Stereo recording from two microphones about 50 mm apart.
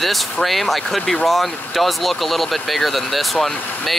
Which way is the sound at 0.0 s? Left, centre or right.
Centre.